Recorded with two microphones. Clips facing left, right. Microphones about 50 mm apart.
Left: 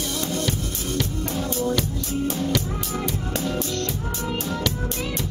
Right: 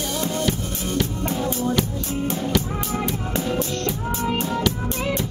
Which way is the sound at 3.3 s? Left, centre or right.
Right.